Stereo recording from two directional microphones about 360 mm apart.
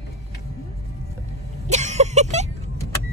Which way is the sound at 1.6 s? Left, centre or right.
Centre.